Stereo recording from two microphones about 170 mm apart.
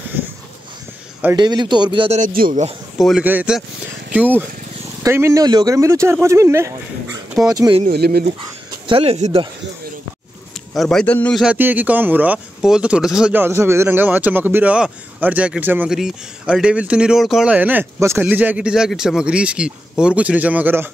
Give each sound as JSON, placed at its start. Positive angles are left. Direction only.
{"t": 1.3, "sound": "speech", "side_deg": -25}
{"t": 2.1, "sound": "speech", "side_deg": -55}
{"t": 3.0, "sound": "speech", "side_deg": 0}
{"t": 7.9, "sound": "speech", "side_deg": -70}
{"t": 8.8, "sound": "speech", "side_deg": -35}
{"t": 10.7, "sound": "speech", "side_deg": 0}
{"t": 11.4, "sound": "speech", "side_deg": -10}